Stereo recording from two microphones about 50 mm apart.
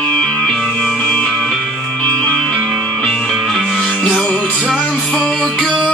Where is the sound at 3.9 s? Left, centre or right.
Centre.